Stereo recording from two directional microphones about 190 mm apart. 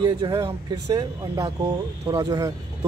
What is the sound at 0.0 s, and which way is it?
Speech, 25° right (ahead or behind).